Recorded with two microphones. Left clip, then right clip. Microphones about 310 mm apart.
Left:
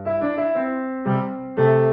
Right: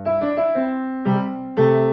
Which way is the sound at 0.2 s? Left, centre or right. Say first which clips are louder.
Right 2 dB; right.